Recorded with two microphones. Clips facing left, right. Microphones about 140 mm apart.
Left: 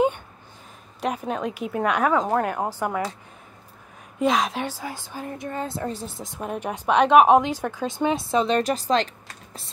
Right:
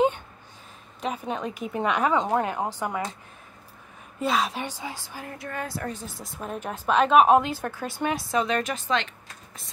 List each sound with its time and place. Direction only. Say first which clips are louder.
1.0 s a woman's voice: left 3 dB; 5° left (ahead or behind)
2.6 s a woman's voice: left 3 dB; 10° left (ahead or behind)
4.4 s a woman's voice: left 2 dB; 10° left (ahead or behind); by 6.2 s 30° left (ahead or behind)
6.4 s speech: left 3 dB; 10° left (ahead or behind); by 9.7 s 35° left (ahead or behind)